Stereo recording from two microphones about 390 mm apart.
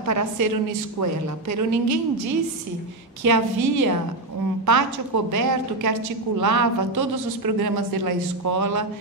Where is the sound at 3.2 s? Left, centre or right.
Right.